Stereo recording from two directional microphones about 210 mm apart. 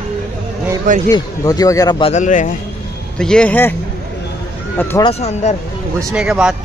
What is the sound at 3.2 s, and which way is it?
Speech, 5° left (ahead or behind).